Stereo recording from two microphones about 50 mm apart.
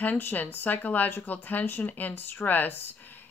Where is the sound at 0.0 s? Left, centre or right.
Left.